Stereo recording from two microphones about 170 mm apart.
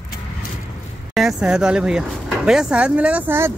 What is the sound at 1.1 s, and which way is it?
Speech, centre (ahead or behind).